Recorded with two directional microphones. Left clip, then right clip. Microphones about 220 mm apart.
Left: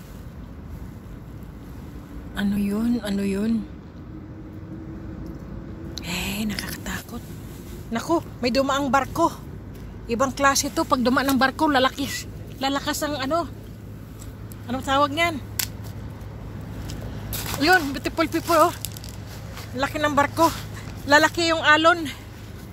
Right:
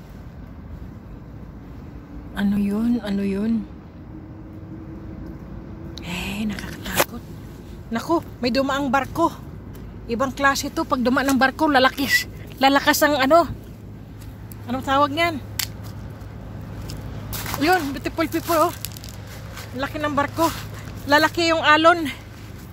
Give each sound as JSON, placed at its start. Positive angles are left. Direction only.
{"t": 2.3, "sound": "speech", "side_deg": -15}
{"t": 5.9, "sound": "a sound", "side_deg": -10}
{"t": 7.9, "sound": "speech", "side_deg": -15}
{"t": 14.7, "sound": "speech", "side_deg": -20}
{"t": 17.5, "sound": "speech", "side_deg": -15}
{"t": 21.1, "sound": "speech", "side_deg": -15}